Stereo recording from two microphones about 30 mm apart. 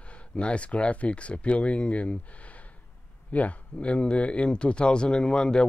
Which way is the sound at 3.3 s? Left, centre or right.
Left.